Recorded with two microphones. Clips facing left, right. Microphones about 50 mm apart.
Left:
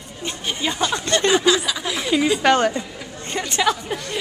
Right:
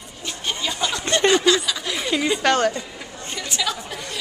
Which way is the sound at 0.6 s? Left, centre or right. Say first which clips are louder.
Left 4 dB; centre.